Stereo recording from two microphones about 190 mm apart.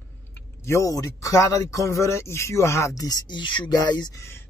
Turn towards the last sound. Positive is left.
turn(degrees=25)  # may be behind; listen again after turning